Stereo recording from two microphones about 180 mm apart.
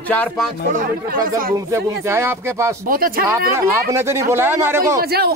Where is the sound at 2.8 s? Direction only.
55° right (ahead or behind).